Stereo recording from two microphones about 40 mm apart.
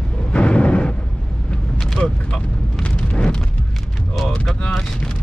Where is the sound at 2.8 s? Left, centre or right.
Left.